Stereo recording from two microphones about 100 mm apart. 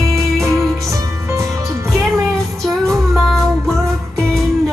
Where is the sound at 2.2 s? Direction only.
Centre (ahead or behind).